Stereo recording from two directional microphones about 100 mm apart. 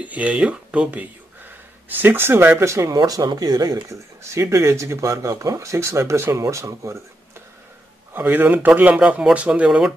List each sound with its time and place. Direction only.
0.0 s speech: 15° right (ahead or behind); by 3.0 s 30° right (ahead or behind)
3.0 s speech: 40° right (ahead or behind)
3.9 s speech: 30° right (ahead or behind)
8.1 s speech: 20° right (ahead or behind)